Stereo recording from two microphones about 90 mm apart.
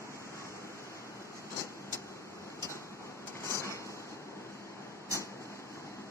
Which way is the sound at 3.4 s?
35° left (ahead or behind).